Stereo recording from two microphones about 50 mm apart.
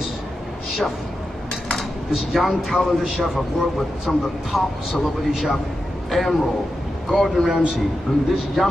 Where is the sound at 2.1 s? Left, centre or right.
Centre.